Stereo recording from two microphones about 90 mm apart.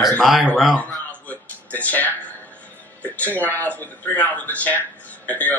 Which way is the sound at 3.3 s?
20° left (ahead or behind).